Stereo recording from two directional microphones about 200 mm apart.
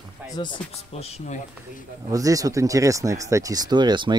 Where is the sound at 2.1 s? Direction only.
15° right (ahead or behind).